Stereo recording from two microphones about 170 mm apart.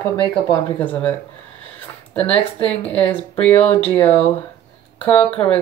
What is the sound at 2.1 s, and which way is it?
Speech, 10° left (ahead or behind).